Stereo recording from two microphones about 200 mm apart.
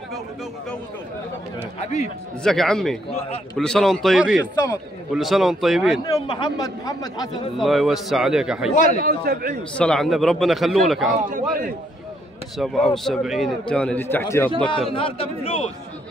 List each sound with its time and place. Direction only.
1.8 s speech: 35° left (ahead or behind)
2.4 s a man's voice: centre (ahead or behind)
6.0 s a man's voice: 20° left (ahead or behind)
7.5 s a man's voice: centre (ahead or behind)
8.7 s speech: 40° left (ahead or behind)
9.0 s a man's voice: 50° right (ahead or behind)
9.8 s a man's voice: 5° left (ahead or behind)
12.5 s a man's voice: centre (ahead or behind)
14.7 s a man's voice: 25° left (ahead or behind)